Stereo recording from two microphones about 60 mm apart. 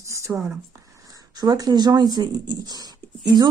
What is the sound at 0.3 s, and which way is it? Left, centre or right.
Speech, centre.